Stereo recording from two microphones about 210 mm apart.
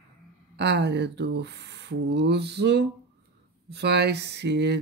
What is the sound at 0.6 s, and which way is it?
Speech, 55° right (ahead or behind).